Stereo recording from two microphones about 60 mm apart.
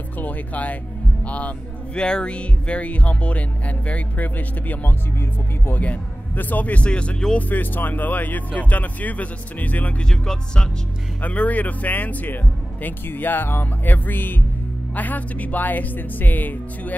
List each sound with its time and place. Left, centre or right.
0.2 s speech: left
2.0 s speech: centre
7.3 s speech: left
10.0 s music: centre
11.2 s speech: left